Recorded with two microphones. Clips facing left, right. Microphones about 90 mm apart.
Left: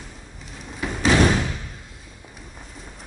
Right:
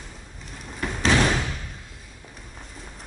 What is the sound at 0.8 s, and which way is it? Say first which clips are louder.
Slam: left 2 dB; 5° left (ahead or behind).